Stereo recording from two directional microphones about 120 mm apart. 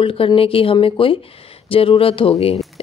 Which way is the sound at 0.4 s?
50° left (ahead or behind).